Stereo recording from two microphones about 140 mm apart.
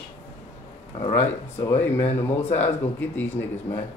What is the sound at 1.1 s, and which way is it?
Speech, 20° left (ahead or behind).